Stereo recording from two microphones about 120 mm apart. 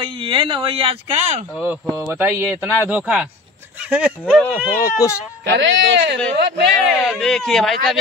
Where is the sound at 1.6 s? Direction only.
10° right (ahead or behind).